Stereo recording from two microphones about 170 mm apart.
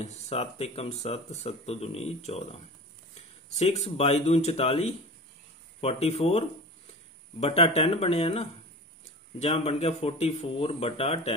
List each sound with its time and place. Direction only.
0.0 s speech: 35° left (ahead or behind)